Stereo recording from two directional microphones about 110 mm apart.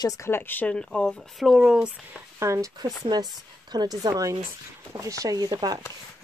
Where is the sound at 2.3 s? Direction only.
25° right (ahead or behind).